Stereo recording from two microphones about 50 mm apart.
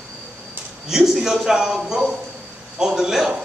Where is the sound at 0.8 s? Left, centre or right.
Centre.